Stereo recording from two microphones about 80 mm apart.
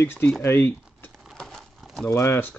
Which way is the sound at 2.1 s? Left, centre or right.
Left.